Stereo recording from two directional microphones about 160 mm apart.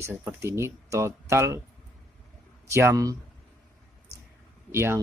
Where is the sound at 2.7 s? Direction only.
20° right (ahead or behind).